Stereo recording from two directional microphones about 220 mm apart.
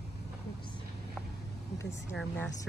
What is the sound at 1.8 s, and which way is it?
Speech, 15° left (ahead or behind).